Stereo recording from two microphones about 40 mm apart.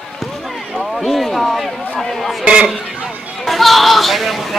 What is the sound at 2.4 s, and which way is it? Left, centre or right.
Speech, right.